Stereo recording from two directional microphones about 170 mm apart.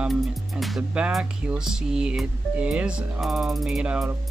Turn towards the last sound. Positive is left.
turn(degrees=-5)  # may be behind; listen again after turning